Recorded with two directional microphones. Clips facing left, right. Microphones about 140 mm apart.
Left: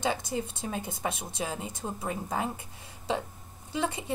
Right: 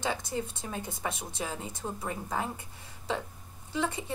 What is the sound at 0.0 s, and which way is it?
A woman's voice, 15° left (ahead or behind).